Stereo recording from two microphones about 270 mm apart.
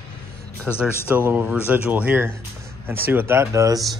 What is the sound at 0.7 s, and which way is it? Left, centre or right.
Speech, centre.